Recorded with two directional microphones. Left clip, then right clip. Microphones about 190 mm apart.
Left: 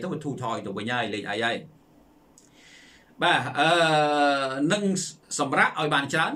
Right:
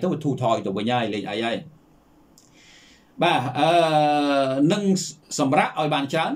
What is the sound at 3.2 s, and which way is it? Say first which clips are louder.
Speech: right 2 dB; 10° right (ahead or behind).